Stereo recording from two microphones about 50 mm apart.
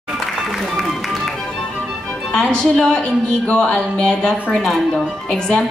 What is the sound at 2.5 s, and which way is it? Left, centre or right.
A woman's voice, centre.